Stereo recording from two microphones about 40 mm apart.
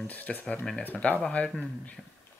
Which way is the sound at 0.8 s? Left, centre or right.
Left.